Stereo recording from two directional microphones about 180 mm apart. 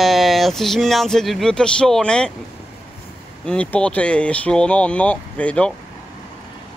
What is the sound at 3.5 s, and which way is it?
Speech, 5° left (ahead or behind).